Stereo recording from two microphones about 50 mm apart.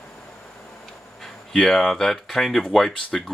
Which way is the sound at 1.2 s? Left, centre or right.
Centre.